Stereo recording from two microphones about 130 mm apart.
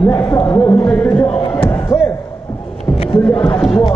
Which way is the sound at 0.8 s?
10° left (ahead or behind).